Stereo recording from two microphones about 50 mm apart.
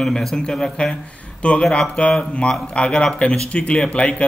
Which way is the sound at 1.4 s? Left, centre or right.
Left.